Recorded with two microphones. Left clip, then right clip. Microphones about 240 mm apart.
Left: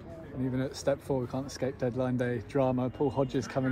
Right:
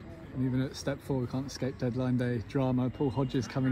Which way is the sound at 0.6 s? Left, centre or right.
Right.